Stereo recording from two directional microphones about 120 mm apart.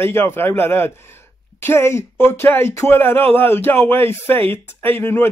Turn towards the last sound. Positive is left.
turn(degrees=20)  # may be behind; listen again after turning